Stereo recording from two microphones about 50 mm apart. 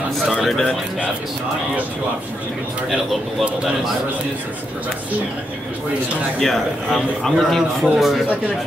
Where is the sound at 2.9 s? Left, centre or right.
Centre.